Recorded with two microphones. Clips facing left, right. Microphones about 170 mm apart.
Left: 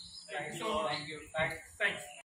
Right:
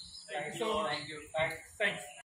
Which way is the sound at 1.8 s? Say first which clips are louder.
Right 4 dB; 25° right (ahead or behind).